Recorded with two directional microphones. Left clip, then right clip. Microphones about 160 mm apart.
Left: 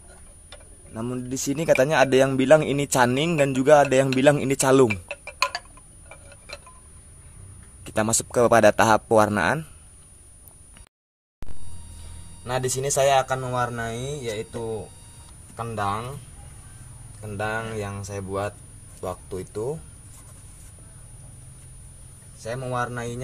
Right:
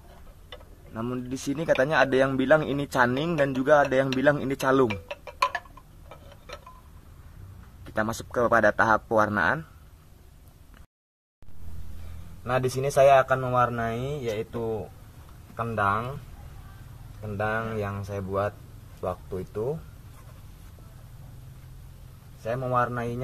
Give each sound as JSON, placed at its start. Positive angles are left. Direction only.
{"t": 0.9, "sound": "a man's voice", "side_deg": 25}
{"t": 4.8, "sound": "chicken", "side_deg": -5}
{"t": 7.8, "sound": "a man's voice", "side_deg": 40}
{"t": 12.4, "sound": "speech", "side_deg": 5}
{"t": 17.2, "sound": "speech", "side_deg": 15}
{"t": 22.4, "sound": "speech", "side_deg": 5}